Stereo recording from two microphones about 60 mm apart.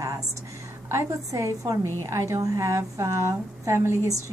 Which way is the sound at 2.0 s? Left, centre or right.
Right.